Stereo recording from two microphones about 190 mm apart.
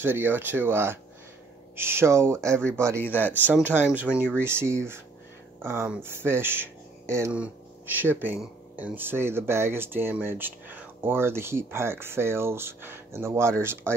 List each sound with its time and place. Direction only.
0.0 s speech: 10° right (ahead or behind)
3.0 s speech: 10° left (ahead or behind)
3.7 s speech: 10° right (ahead or behind)